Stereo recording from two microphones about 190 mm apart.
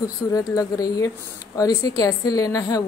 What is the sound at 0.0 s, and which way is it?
A woman's voice, 20° left (ahead or behind).